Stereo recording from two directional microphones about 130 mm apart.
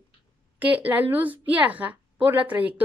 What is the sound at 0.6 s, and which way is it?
A woman's voice, 10° right (ahead or behind).